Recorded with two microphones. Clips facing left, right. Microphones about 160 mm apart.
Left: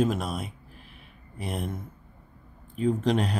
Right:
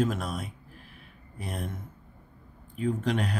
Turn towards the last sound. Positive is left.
turn(degrees=30)  # may be behind; listen again after turning